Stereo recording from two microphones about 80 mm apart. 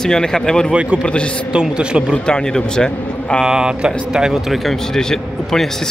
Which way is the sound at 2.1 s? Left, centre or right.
Centre.